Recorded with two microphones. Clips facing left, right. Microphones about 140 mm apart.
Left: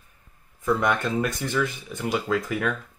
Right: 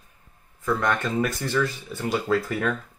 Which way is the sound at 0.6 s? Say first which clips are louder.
Left 1 dB; 15° left (ahead or behind).